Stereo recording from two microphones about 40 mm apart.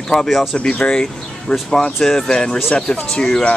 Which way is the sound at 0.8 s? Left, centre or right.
Left.